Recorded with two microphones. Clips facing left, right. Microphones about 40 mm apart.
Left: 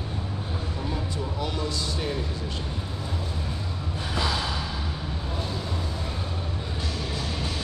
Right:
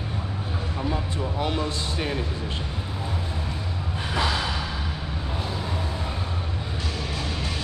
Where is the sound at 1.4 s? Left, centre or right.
Right.